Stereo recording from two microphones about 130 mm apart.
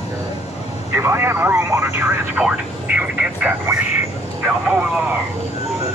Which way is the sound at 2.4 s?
10° right (ahead or behind).